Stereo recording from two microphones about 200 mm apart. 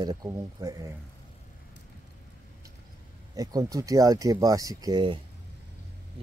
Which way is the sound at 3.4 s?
20° right (ahead or behind).